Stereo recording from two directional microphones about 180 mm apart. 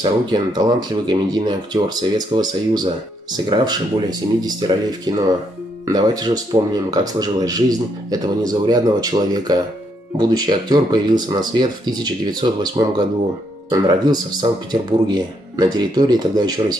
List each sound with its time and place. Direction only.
0.0 s speech: 25° right (ahead or behind)